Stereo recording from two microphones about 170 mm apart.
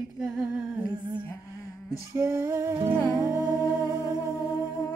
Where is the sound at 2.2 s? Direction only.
15° right (ahead or behind).